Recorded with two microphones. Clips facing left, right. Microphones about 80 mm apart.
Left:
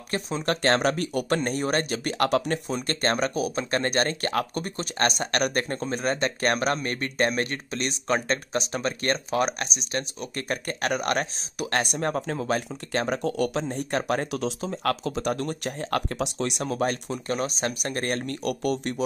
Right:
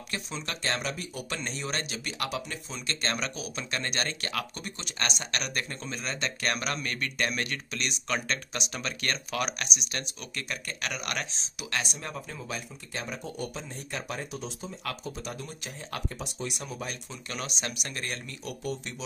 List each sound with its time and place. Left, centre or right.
0.1 s speech: left
17.3 s speech: left